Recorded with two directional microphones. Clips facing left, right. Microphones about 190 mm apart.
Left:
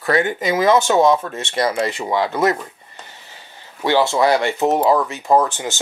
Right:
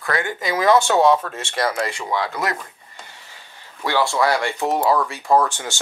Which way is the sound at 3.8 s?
25° left (ahead or behind).